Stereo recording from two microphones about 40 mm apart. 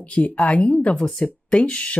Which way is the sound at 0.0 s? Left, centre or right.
Left.